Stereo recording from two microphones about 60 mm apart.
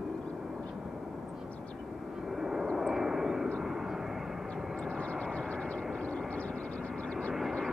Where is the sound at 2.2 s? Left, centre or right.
Centre.